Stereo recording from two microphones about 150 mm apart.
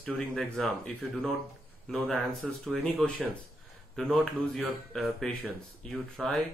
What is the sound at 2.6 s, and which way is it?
Speech, 5° left (ahead or behind).